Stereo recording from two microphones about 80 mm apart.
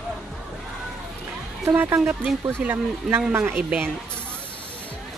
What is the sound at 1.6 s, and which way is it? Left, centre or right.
Speech, right.